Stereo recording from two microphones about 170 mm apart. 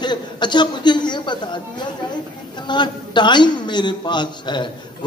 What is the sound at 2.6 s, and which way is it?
A man's voice, 25° left (ahead or behind).